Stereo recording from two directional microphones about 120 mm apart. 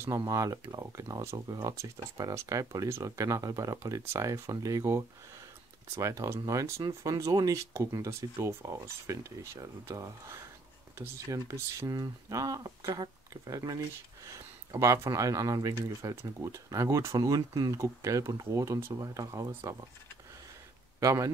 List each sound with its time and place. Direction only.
0.0 s speech: 25° right (ahead or behind)
21.0 s speech: 25° right (ahead or behind)